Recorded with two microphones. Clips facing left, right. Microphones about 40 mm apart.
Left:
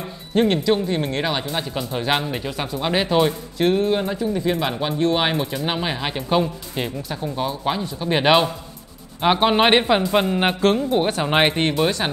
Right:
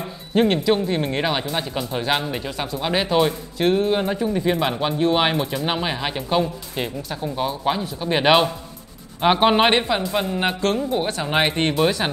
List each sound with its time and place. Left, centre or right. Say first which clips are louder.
0.3 s speech: even; centre
4.1 s speech: right 1 dB; centre
9.7 s speech: left 3 dB; centre
11.5 s speech: even; centre